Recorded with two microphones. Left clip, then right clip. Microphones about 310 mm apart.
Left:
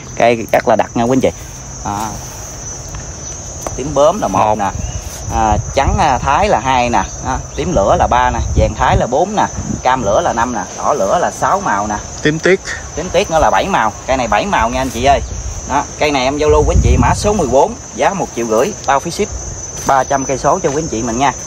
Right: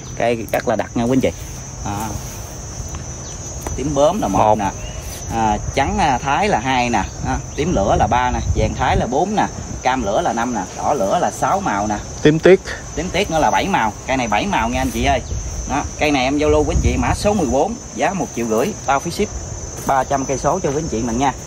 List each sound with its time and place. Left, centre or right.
0.2 s speech: left
3.9 s speech: centre
5.3 s speech: centre
12.2 s speech: centre
13.1 s speech: centre
19.9 s cricket: left